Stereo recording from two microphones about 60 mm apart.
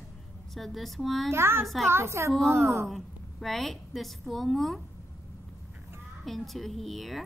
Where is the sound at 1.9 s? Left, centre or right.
Right.